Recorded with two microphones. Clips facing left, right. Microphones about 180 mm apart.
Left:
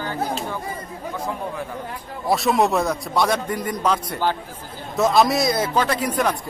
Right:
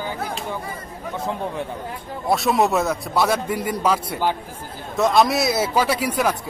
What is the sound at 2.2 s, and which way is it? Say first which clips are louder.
A man's voice: even; centre (ahead or behind).